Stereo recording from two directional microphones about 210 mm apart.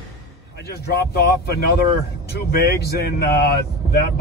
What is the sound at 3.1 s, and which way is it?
Speech, 45° left (ahead or behind).